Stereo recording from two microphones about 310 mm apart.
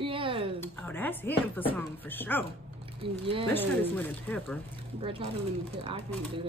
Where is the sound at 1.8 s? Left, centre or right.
Centre.